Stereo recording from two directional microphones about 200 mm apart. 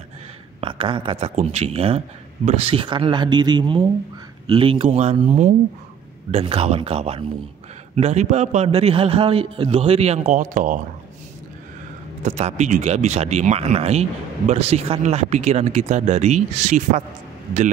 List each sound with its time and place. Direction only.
0.6 s a man's voice: 25° right (ahead or behind)
12.3 s a man's voice: 35° right (ahead or behind)